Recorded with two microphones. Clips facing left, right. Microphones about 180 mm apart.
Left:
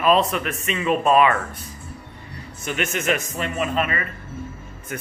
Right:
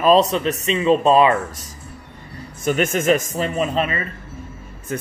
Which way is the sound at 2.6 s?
40° right (ahead or behind).